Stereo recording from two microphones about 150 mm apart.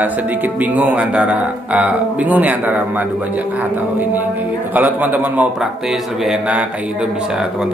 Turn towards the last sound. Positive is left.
turn(degrees=-5)  # may be behind; listen again after turning